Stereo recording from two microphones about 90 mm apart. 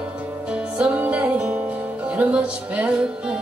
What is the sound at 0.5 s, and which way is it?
Music, 10° right (ahead or behind).